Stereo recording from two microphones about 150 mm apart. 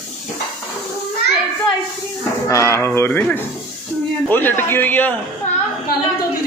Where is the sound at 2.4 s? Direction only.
20° left (ahead or behind).